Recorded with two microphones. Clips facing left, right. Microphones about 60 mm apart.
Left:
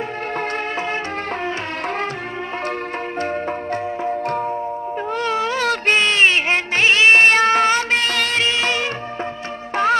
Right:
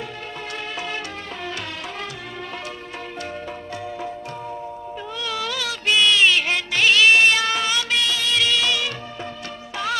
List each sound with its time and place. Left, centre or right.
3.2 s music: left
8.4 s music: left